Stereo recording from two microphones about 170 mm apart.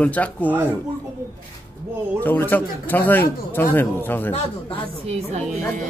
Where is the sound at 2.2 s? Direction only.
10° left (ahead or behind).